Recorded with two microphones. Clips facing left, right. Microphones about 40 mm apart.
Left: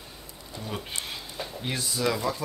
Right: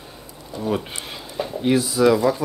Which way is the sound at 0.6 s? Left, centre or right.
Centre.